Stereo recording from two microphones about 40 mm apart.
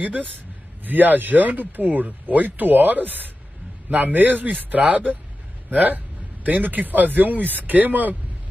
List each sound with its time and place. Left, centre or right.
0.8 s a man's voice: right